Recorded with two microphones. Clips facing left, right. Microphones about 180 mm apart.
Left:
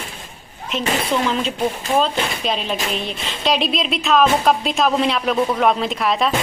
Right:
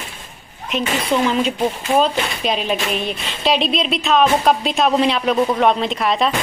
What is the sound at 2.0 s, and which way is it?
Speech, 5° right (ahead or behind).